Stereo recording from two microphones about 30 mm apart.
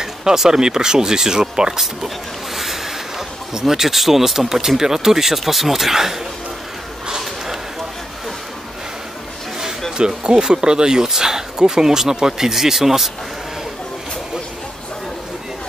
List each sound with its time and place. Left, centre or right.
0.0 s speech: centre
2.5 s a sound: centre
3.5 s speech: centre
9.9 s speech: right; by 13.1 s centre